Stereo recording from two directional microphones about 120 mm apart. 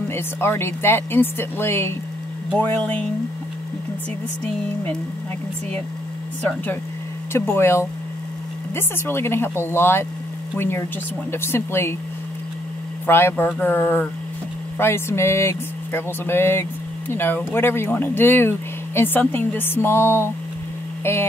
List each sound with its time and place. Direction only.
0.1 s speech: 20° left (ahead or behind)
6.4 s speech: 15° left (ahead or behind)
11.3 s speech: 20° left (ahead or behind)
13.0 s speech: 20° left (ahead or behind)